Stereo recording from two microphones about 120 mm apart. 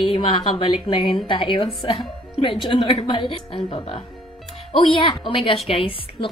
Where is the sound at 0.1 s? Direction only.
50° left (ahead or behind).